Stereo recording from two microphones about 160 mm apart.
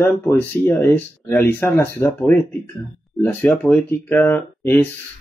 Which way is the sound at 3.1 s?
5° left (ahead or behind).